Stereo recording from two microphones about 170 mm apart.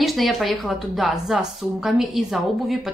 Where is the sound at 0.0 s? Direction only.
Centre (ahead or behind).